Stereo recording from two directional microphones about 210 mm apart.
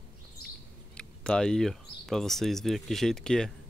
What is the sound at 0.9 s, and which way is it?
Speech, 5° left (ahead or behind).